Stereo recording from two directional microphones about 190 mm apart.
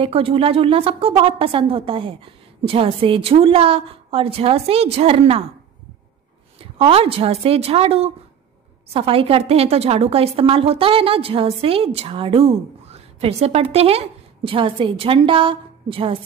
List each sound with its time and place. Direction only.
0.0 s a woman's voice: 30° right (ahead or behind)
6.6 s a woman's voice: 30° right (ahead or behind)